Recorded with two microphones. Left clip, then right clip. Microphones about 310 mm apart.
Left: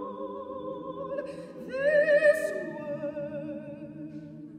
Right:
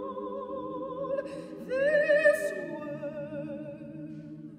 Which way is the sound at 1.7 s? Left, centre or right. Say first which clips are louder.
Left 1 dB; right.